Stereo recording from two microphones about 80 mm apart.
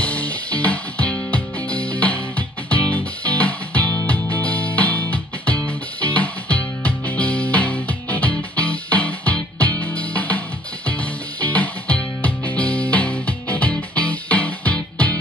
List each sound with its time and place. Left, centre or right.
0.0 s music: centre
11.4 s music: centre